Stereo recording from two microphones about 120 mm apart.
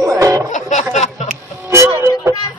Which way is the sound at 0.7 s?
80° left.